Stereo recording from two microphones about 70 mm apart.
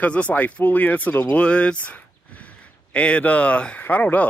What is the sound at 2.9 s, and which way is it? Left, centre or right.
Speech, centre.